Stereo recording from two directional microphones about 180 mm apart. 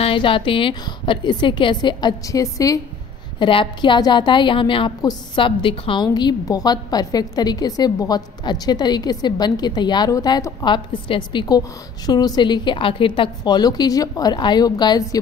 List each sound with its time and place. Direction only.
0.0 s a woman's voice: 30° left (ahead or behind)